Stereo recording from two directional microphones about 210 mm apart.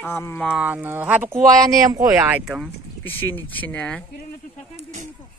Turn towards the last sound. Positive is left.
turn(degrees=5)  # may be behind; listen again after turning